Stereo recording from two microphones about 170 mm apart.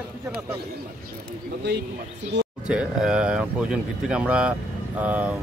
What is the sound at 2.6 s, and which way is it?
Speech, 5° right (ahead or behind).